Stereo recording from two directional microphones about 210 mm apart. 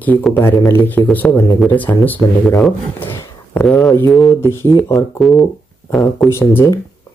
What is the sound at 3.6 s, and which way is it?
Speech, centre (ahead or behind).